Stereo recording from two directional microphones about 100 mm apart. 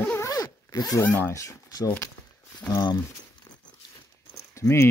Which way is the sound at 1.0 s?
20° left (ahead or behind).